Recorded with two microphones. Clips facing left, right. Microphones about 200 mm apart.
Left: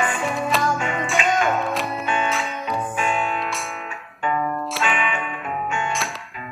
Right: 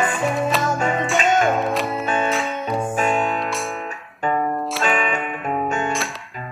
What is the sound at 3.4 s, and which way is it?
Music, centre (ahead or behind).